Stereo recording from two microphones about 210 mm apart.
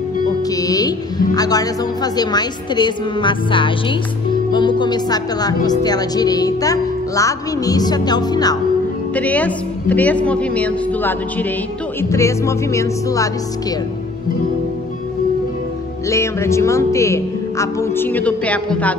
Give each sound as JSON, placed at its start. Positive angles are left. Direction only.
{"t": 0.5, "sound": "a woman's voice", "side_deg": 15}
{"t": 9.1, "sound": "speech", "side_deg": 5}
{"t": 16.1, "sound": "speech", "side_deg": 15}